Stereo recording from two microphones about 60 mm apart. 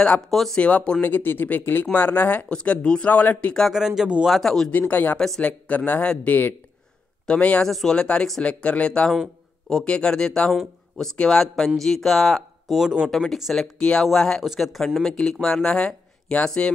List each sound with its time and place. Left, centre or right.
0.3 s speech: centre
0.6 s speech: left
1.0 s speech: left
2.5 s speech: centre
3.7 s speech: centre
4.3 s speech: centre
4.6 s speech: left
7.6 s speech: centre
11.1 s speech: centre
13.7 s speech: centre
14.4 s speech: centre